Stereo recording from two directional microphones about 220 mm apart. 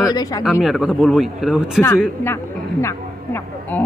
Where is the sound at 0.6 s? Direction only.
Centre (ahead or behind).